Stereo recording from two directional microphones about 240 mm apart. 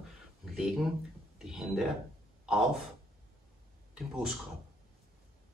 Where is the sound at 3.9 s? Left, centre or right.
Centre.